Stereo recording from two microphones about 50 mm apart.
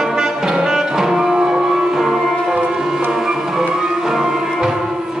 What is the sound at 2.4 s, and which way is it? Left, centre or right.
Music, centre.